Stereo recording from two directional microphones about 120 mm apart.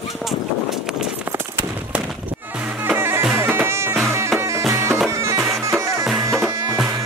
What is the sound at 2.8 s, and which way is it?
Music, 20° right (ahead or behind).